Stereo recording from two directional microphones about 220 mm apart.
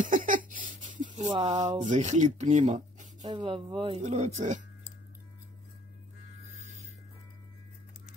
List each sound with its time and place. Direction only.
0.0 s a sound: 35° right (ahead or behind); by 2.0 s 20° right (ahead or behind)
2.0 s speech: 35° right (ahead or behind)
3.2 s speech: 20° right (ahead or behind)